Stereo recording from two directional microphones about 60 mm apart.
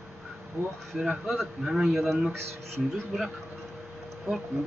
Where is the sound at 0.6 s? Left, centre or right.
Right.